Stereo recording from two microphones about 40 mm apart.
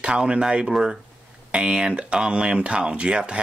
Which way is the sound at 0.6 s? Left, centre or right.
Centre.